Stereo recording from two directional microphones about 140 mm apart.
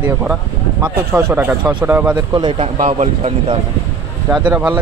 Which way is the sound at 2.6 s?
50° right (ahead or behind).